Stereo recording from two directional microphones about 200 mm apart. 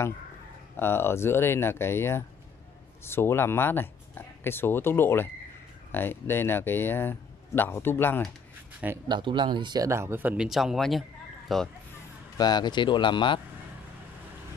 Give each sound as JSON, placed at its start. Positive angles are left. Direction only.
{"t": 0.7, "sound": "speech", "side_deg": 10}
{"t": 8.8, "sound": "speech", "side_deg": -15}
{"t": 12.4, "sound": "speech", "side_deg": 20}